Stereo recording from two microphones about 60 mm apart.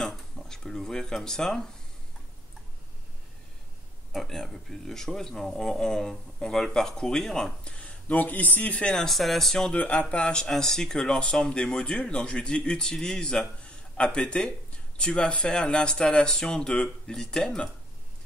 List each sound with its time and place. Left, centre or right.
0.5 s speech: centre
4.1 s speech: centre
7.7 s speech: left
8.9 s speech: centre
9.7 s speech: left